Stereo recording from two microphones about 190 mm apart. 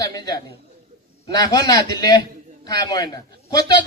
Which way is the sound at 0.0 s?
20° left (ahead or behind).